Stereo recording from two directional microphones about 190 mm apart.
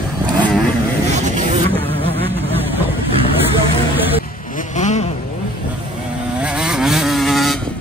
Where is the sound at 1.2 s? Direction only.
40° right (ahead or behind).